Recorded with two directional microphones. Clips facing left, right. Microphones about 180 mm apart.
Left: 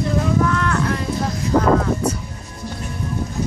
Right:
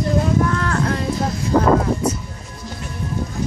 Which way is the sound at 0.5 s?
35° right (ahead or behind).